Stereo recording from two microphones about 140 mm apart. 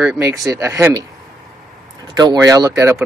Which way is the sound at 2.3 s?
25° right (ahead or behind).